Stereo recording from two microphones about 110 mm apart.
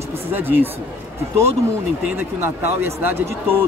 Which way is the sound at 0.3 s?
20° right (ahead or behind).